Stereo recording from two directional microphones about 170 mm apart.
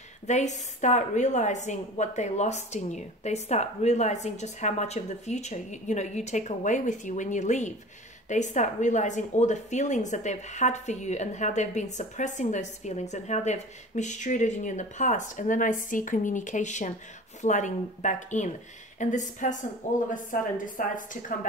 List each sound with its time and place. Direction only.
0.3 s a woman's voice: 45° left (ahead or behind)